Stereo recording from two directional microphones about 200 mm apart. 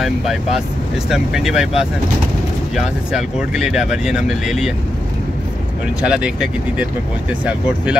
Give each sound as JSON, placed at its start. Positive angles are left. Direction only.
{"t": 0.0, "sound": "speech", "side_deg": 0}
{"t": 2.7, "sound": "speech", "side_deg": -5}
{"t": 6.0, "sound": "speech", "side_deg": -5}